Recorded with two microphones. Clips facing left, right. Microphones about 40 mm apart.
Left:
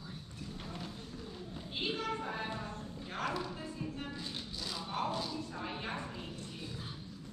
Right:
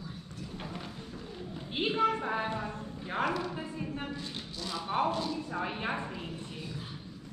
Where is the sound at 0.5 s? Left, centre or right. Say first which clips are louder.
Right 5 dB; right.